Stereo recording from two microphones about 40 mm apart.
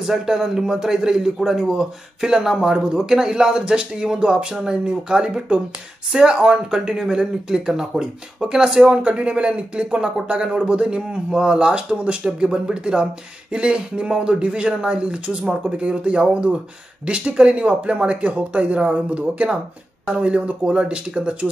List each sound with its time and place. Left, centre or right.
0.0 s a man's voice: centre; by 21.5 s right